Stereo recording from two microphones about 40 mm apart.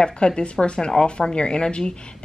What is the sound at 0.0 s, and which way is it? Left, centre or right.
A woman's voice, left.